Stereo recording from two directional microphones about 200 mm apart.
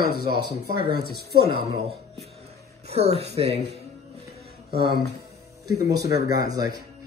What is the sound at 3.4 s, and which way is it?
Speech, 25° right (ahead or behind).